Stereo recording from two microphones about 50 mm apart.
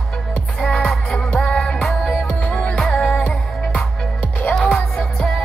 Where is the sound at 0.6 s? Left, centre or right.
Centre.